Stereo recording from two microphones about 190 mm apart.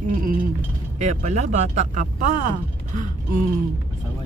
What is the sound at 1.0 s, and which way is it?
Speech, 35° right (ahead or behind).